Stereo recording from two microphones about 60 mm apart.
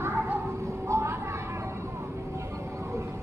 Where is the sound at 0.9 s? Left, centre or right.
Right.